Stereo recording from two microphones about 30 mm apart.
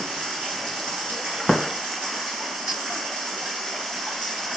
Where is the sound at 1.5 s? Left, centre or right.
Centre.